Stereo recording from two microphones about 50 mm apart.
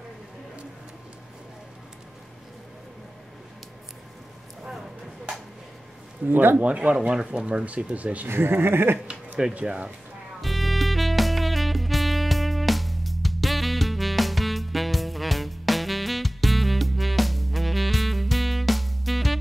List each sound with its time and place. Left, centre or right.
6.2 s a man's voice: right
6.6 s speech: right
7.0 s speech: centre
8.3 s speech: right
9.6 s speech: right
10.4 s music: centre